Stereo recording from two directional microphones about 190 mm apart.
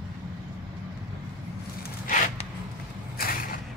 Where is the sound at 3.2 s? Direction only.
50° left (ahead or behind).